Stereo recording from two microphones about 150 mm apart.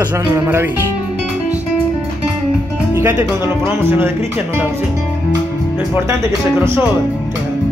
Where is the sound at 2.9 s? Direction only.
15° right (ahead or behind).